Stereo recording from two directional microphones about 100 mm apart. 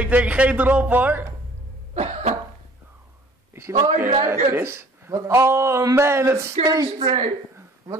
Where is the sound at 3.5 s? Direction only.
30° right (ahead or behind).